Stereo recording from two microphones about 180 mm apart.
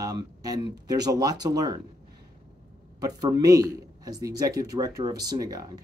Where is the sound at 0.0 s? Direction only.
20° right (ahead or behind).